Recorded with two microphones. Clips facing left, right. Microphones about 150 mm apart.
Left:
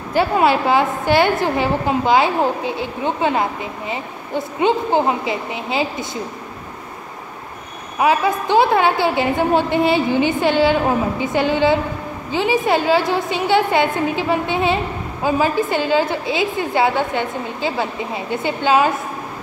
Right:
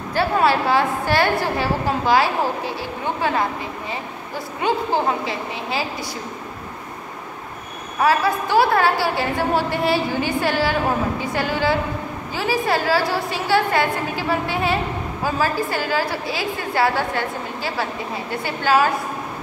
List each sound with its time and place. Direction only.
0.1 s a woman's voice: 20° left (ahead or behind)
8.0 s a woman's voice: 20° left (ahead or behind)